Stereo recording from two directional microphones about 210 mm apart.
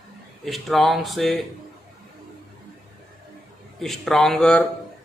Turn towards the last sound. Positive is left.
turn(degrees=5)  # may be behind; listen again after turning